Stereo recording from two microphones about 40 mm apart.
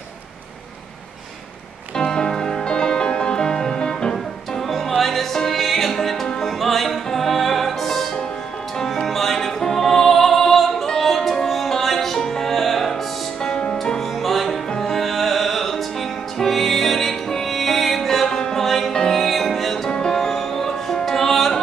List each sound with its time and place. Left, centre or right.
2.0 s music: centre
4.1 s music: centre
6.6 s opera: centre
8.7 s music: centre